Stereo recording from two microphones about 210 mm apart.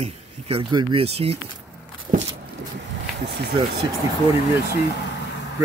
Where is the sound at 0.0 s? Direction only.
25° right (ahead or behind).